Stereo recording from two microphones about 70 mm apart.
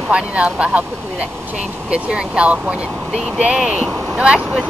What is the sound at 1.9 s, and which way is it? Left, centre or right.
Speech, centre.